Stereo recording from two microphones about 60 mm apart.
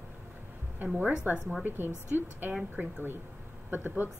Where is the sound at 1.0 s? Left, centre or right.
Centre.